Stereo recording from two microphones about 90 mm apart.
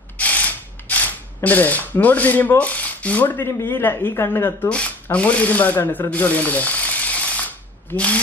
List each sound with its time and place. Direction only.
0.2 s speech: 15° left (ahead or behind)
4.6 s speech: 10° left (ahead or behind)